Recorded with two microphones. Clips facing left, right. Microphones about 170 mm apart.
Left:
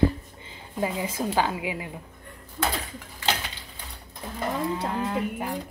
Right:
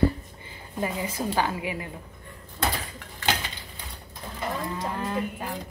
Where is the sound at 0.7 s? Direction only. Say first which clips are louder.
Left 1 dB; 15° left (ahead or behind).